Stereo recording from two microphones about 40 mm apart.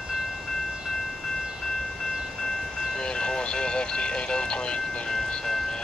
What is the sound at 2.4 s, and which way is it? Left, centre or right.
Train, centre.